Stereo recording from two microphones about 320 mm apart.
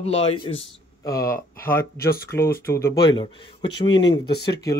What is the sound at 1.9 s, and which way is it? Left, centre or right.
Speech, left.